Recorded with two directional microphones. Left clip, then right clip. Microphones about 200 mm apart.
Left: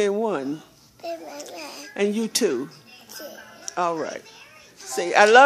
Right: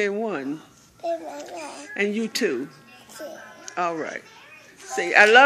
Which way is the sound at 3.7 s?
20° left (ahead or behind).